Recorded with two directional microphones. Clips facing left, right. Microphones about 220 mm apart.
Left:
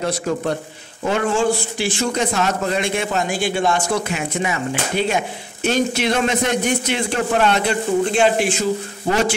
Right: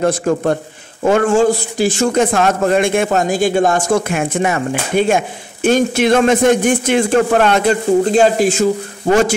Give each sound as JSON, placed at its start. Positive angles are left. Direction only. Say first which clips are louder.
{"t": 0.0, "sound": "a man's voice", "louder": "right 6 dB", "side_deg": -50}